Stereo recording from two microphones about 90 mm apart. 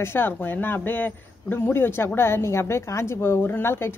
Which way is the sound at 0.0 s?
25° left (ahead or behind).